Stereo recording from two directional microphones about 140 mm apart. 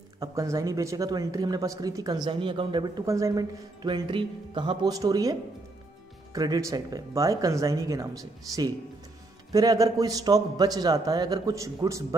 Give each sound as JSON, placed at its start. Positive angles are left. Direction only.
{"t": 0.2, "sound": "speech", "side_deg": -20}
{"t": 3.1, "sound": "speech", "side_deg": -20}